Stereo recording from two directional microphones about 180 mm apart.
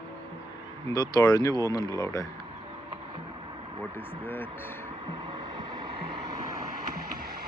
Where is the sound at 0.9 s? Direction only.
20° left (ahead or behind).